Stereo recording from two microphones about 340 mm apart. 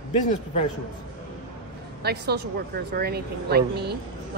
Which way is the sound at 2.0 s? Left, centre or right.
Right.